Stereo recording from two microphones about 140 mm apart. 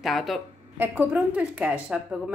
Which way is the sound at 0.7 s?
15° right (ahead or behind).